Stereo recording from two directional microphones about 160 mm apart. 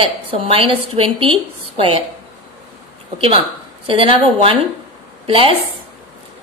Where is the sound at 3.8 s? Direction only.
35° right (ahead or behind).